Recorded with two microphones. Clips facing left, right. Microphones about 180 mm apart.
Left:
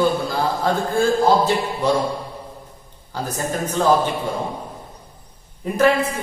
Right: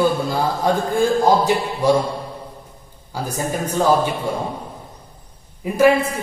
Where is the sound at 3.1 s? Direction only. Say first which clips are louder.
Right 1 dB; 10° right (ahead or behind).